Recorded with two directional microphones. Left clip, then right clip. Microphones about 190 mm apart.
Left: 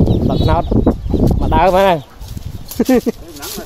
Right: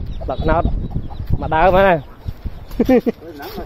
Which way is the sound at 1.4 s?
30° left (ahead or behind).